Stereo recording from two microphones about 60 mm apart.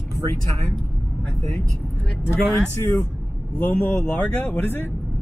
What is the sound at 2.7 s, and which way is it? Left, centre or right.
Speech, left.